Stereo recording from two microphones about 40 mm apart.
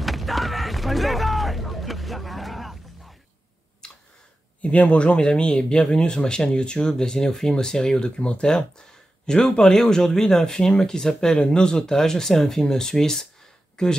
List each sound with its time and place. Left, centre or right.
0.0 s a sound: centre
3.8 s tick: left
4.6 s speech: left; by 13.9 s centre